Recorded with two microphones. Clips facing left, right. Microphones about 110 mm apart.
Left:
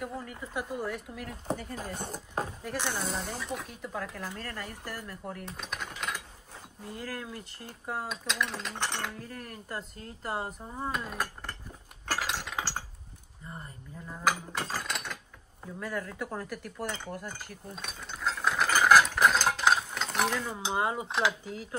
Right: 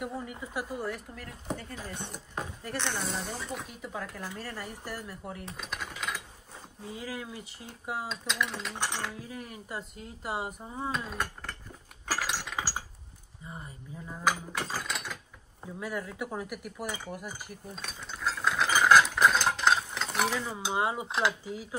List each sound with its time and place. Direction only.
0.2 s speech: 10° right (ahead or behind)
1.8 s speech: 40° left (ahead or behind)
2.6 s speech: 5° left (ahead or behind)
11.1 s a sound: 5° left (ahead or behind)
14.3 s ratchet: 5° right (ahead or behind)
15.6 s speech: 10° right (ahead or behind)
17.7 s mechanisms: centre (ahead or behind)